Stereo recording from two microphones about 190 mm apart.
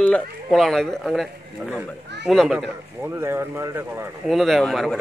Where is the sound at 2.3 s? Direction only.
Centre (ahead or behind).